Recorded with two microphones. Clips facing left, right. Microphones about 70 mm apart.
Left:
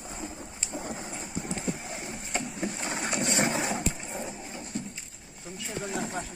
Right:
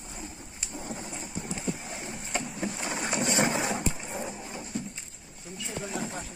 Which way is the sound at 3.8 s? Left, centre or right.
Centre.